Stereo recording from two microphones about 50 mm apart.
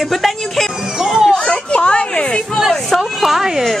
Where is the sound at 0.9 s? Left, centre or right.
Centre.